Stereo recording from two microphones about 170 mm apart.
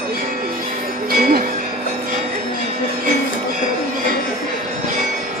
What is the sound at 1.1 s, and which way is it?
Music, 60° right (ahead or behind).